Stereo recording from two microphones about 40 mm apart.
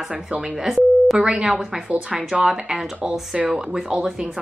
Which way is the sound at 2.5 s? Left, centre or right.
Centre.